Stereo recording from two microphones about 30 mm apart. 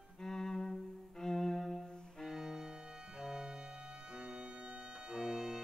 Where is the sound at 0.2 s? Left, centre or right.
Centre.